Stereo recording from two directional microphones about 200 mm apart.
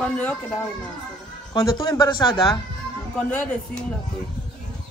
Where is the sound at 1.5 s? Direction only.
20° left (ahead or behind).